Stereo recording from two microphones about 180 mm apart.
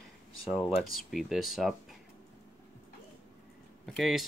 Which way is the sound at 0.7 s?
Centre (ahead or behind).